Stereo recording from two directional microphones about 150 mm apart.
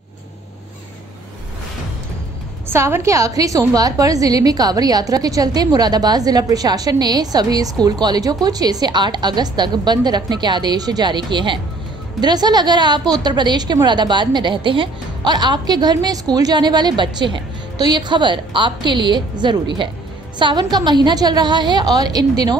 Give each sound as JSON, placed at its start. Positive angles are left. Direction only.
{"t": 2.7, "sound": "a woman's voice", "side_deg": -15}